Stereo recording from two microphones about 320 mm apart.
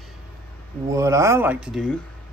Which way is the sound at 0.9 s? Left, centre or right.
Centre.